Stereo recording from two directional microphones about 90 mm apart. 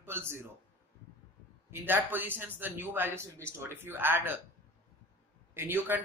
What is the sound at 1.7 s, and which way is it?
A man's voice, 20° right (ahead or behind).